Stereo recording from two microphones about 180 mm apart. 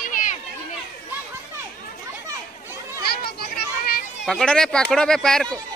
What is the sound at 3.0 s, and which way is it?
Children playing, 60° left (ahead or behind).